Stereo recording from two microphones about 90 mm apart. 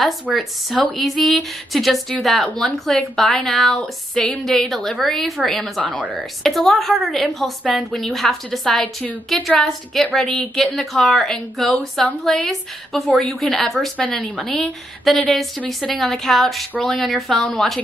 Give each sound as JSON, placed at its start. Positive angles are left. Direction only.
{"t": 0.3, "sound": "a woman's voice", "side_deg": -5}
{"t": 5.9, "sound": "speech", "side_deg": -15}
{"t": 6.4, "sound": "a woman's voice", "side_deg": 5}